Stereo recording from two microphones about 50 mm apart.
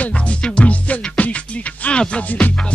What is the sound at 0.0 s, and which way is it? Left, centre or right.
Music, left.